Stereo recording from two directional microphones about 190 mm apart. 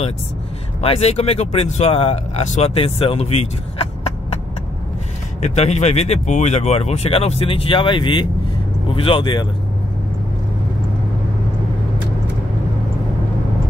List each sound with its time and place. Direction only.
0.7 s speech: 35° left (ahead or behind)
5.4 s speech: 35° left (ahead or behind)